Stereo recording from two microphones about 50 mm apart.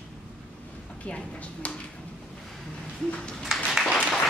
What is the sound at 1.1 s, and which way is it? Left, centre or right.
Speech, left.